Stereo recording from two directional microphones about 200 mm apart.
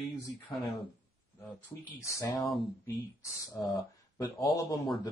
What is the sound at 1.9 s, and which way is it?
Speech, 15° left (ahead or behind).